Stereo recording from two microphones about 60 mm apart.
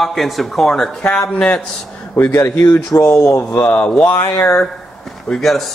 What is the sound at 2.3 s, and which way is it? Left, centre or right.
Speech, left.